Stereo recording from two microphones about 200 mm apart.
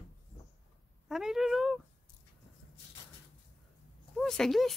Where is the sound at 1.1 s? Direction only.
Centre (ahead or behind).